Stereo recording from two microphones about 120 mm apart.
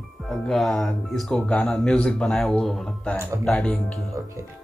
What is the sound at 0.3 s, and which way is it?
Speech, centre (ahead or behind).